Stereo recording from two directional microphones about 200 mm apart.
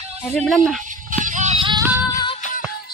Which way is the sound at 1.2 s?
40° right (ahead or behind).